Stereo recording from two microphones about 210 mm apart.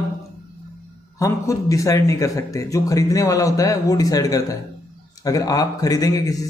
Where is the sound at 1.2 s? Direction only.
15° left (ahead or behind).